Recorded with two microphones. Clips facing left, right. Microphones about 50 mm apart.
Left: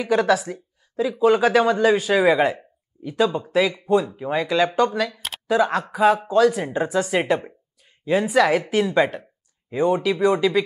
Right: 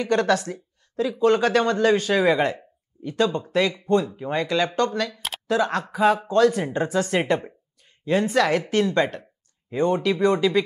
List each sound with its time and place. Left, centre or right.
0.0 s speech: centre